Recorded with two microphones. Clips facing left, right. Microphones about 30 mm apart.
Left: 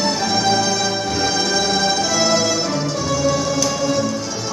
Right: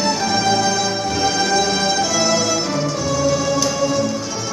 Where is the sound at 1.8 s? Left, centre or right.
Centre.